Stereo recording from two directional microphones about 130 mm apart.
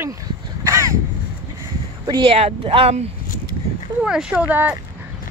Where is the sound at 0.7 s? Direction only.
25° right (ahead or behind).